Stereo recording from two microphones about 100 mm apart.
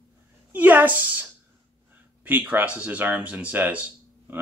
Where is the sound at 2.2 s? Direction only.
15° right (ahead or behind).